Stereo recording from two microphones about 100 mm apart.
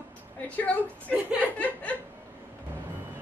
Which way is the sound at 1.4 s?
15° left (ahead or behind).